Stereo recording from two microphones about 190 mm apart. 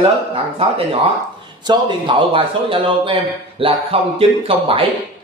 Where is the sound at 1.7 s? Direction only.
25° right (ahead or behind).